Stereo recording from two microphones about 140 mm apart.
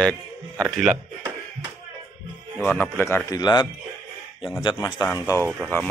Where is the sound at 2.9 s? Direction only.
15° left (ahead or behind).